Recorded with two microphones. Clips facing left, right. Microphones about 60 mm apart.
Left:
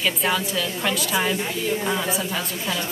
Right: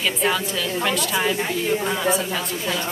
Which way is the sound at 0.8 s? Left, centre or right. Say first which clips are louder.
Right 1 dB; centre.